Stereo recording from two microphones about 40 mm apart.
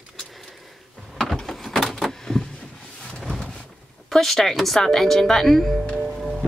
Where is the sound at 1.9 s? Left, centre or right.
Centre.